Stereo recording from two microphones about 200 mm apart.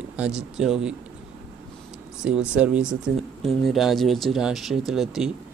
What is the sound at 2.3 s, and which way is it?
Speech, 5° right (ahead or behind).